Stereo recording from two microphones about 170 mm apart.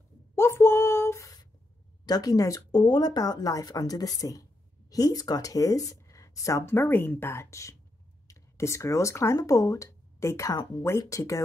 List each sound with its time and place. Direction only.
0.4 s female singing: 15° left (ahead or behind)
2.0 s speech: 20° left (ahead or behind)